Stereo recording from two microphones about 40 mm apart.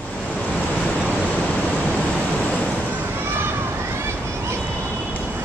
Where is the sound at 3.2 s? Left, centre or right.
Right.